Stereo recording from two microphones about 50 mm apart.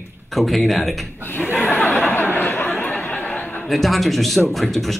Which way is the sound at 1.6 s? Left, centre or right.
Left.